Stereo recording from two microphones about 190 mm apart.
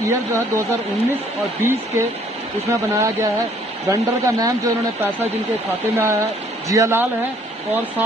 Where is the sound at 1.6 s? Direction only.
15° right (ahead or behind).